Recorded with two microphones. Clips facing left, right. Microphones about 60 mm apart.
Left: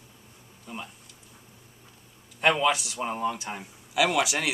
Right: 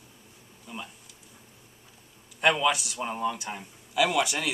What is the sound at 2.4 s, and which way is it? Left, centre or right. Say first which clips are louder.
Speech: left 1 dB; centre.